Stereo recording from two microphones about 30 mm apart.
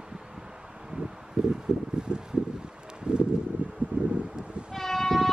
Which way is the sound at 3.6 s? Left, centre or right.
Right.